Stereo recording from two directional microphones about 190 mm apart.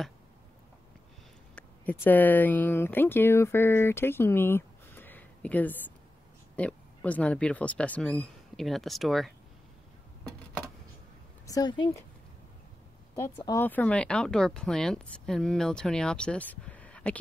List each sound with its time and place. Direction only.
1.5 s speech: 10° left (ahead or behind)
11.4 s a woman's voice: 20° left (ahead or behind)
13.1 s speech: 20° left (ahead or behind)